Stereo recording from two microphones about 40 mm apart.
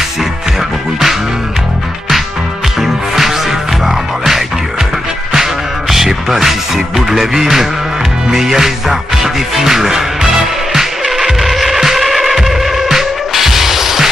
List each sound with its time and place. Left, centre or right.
2.8 s music: centre